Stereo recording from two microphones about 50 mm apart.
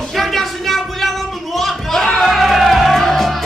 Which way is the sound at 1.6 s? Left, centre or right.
Centre.